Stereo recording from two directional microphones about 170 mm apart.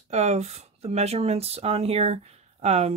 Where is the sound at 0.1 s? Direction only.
40° right (ahead or behind).